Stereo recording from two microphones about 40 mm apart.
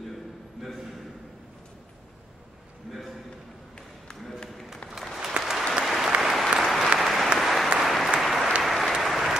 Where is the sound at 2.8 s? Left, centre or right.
Centre.